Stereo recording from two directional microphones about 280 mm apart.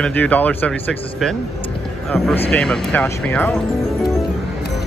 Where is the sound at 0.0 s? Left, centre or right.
Centre.